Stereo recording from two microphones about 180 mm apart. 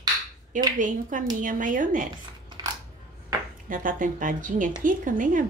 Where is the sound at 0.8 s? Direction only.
45° right (ahead or behind).